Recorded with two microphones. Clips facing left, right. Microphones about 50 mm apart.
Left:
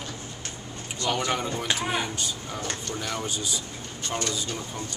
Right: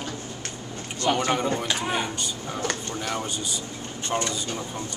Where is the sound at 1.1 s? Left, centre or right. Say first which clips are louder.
Right 4 dB; right.